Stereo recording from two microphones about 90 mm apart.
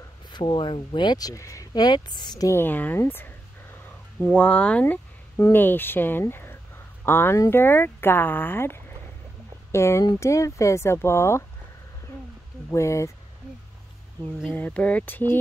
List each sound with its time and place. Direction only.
0.3 s speech: 60° left (ahead or behind); by 1.7 s 35° left (ahead or behind)
1.7 s speech: 50° left (ahead or behind)
2.4 s a sound: 25° left (ahead or behind)
4.4 s speech: 10° left (ahead or behind); by 11.4 s 30° left (ahead or behind)
12.7 s speech: 35° left (ahead or behind)
14.5 s speech: 20° left (ahead or behind)